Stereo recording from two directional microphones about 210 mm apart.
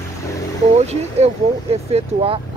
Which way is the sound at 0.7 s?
30° right (ahead or behind).